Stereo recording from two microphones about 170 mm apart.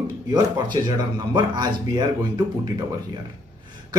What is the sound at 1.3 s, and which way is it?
Speech, 25° right (ahead or behind).